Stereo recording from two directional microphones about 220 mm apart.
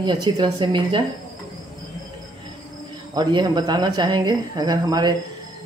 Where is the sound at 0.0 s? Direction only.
20° right (ahead or behind).